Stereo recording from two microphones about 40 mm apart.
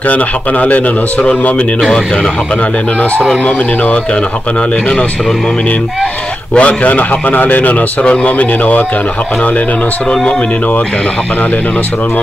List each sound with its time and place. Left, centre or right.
0.1 s a man's voice: left
6.5 s a man's voice: left
8.1 s a man's voice: left